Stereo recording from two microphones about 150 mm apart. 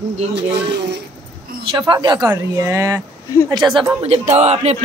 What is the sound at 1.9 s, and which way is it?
Speech, 30° right (ahead or behind).